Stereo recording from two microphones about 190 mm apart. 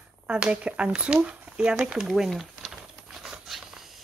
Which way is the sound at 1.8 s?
5° right (ahead or behind).